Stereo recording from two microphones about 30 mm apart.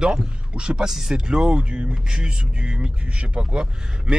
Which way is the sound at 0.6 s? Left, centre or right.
Right.